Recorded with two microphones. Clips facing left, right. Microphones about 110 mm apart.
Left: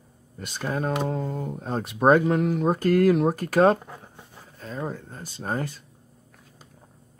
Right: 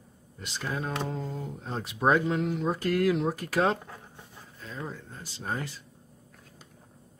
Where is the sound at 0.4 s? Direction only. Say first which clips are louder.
Left 5 dB; 50° left (ahead or behind).